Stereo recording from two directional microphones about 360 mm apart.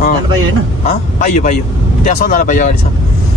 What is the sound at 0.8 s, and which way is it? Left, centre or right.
A man's voice, centre.